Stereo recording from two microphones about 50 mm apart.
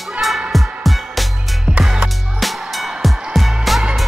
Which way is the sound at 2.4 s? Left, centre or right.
Centre.